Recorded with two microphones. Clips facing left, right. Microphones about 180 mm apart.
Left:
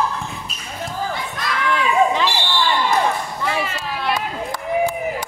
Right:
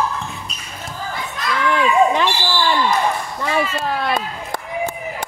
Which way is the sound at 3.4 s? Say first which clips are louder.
Right 1 dB; 50° right (ahead or behind).